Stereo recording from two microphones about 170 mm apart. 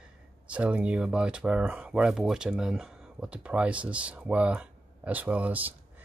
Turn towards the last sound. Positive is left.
turn(degrees=-10)  # may be behind; listen again after turning